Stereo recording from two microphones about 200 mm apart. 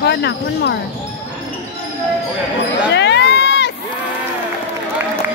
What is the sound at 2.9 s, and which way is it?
Crowd, 60° left (ahead or behind).